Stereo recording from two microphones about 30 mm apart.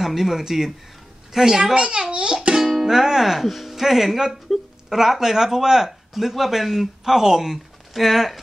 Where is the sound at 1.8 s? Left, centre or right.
Right.